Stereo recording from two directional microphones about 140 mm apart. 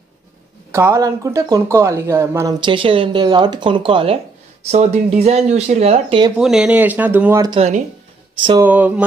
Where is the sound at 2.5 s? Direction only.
35° right (ahead or behind).